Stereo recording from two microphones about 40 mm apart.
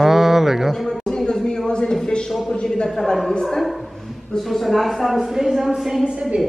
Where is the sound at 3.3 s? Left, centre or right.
Centre.